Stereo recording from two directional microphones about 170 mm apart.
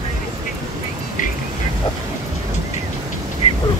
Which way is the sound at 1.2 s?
50° left (ahead or behind).